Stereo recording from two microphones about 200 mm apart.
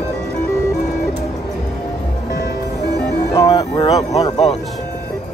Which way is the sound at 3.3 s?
20° left (ahead or behind).